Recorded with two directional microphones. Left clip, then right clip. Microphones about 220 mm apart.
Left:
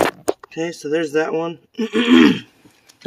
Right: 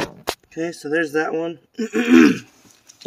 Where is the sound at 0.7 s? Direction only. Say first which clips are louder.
Left 1 dB; 25° left (ahead or behind).